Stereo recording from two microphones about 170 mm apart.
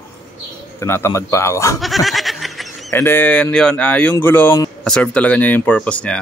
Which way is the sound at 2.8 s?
15° left (ahead or behind).